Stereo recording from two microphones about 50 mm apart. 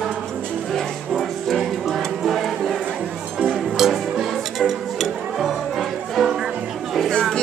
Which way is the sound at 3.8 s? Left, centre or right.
Centre.